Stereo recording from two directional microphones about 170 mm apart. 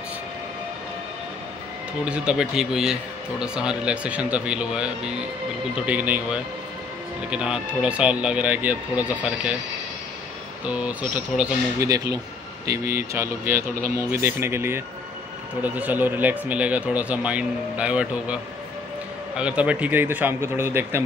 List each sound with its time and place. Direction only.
2.0 s a man's voice: 5° right (ahead or behind)
10.6 s speech: 5° right (ahead or behind)
11.9 s speech: 20° right (ahead or behind)